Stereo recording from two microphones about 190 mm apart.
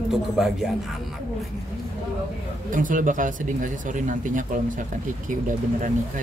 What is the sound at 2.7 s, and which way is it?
Speech, 45° right (ahead or behind).